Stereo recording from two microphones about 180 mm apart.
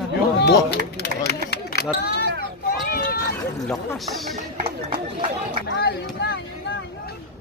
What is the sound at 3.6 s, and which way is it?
Speech, centre (ahead or behind).